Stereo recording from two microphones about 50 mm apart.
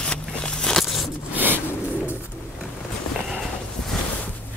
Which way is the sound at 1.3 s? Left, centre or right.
Right.